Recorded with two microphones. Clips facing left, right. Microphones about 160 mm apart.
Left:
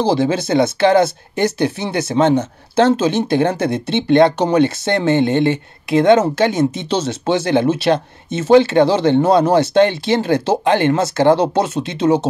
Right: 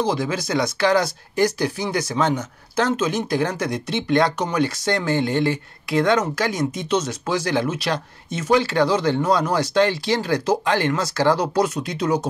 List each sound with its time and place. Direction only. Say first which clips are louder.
0.0 s speech: left 7 dB; 30° left (ahead or behind)